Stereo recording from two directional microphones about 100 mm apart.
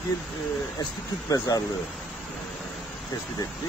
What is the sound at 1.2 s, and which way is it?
Speech, 40° left (ahead or behind).